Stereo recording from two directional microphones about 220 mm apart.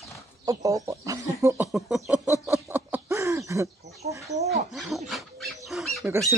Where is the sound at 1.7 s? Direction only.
Centre (ahead or behind).